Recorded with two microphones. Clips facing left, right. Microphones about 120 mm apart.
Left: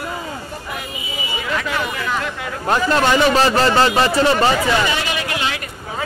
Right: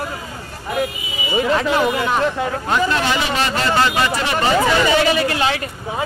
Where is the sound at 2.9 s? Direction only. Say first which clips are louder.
Left 5 dB; 35° left (ahead or behind).